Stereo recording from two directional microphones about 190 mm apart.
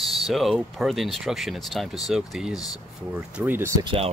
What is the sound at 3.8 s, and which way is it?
Speech, 30° right (ahead or behind).